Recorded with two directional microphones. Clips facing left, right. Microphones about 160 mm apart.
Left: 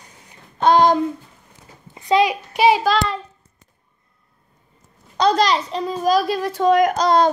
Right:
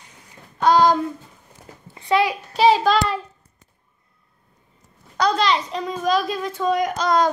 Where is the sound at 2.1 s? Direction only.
20° left (ahead or behind).